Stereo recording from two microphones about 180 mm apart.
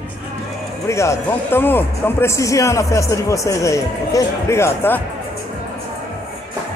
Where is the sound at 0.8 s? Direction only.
15° left (ahead or behind).